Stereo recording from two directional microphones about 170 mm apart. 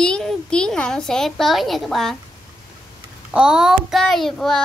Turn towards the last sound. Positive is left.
turn(degrees=0)  # may be behind; listen again after turning